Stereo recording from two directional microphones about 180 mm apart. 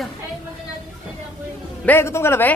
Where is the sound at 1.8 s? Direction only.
10° left (ahead or behind).